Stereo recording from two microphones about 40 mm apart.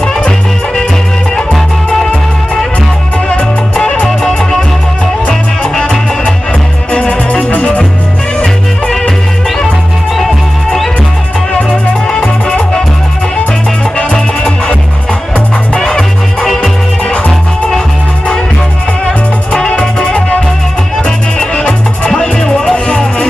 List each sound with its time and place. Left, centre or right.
4.3 s music: centre
5.6 s music: centre
12.2 s music: centre
15.3 s music: left
19.8 s music: centre